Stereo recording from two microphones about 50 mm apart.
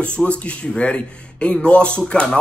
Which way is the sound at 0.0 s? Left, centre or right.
Left.